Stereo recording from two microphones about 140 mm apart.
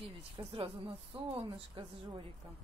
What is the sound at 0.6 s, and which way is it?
Speech, 35° right (ahead or behind).